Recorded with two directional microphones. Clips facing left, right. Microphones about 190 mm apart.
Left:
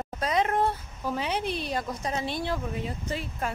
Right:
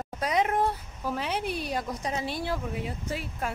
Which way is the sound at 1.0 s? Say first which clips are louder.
Left 1 dB; centre (ahead or behind).